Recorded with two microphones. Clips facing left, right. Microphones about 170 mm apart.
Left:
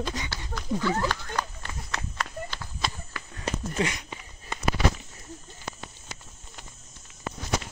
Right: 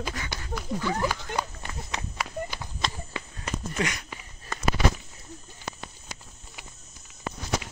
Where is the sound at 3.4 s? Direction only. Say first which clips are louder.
Left 2 dB; 30° left (ahead or behind).